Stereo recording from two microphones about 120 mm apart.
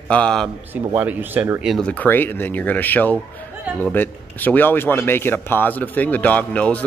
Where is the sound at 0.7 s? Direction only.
15° right (ahead or behind).